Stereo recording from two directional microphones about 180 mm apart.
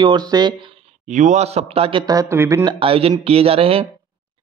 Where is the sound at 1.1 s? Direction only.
40° right (ahead or behind); by 2.7 s 15° right (ahead or behind).